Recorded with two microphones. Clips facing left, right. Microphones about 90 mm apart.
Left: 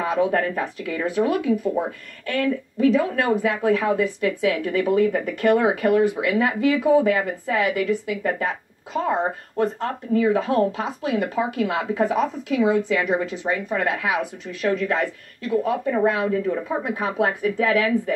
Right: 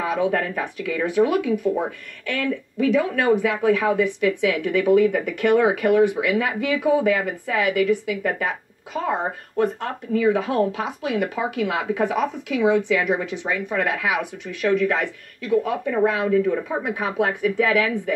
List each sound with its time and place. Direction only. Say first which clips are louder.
0.0 s speech: left 1 dB; 40° left (ahead or behind)
9.6 s speech: right 1 dB; 35° left (ahead or behind)